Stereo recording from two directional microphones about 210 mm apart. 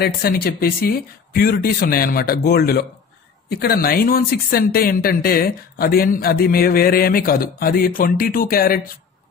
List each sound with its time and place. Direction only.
0.0 s speech: 45° left (ahead or behind)